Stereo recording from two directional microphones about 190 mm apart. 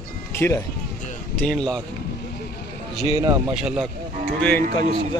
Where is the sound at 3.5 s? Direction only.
5° right (ahead or behind).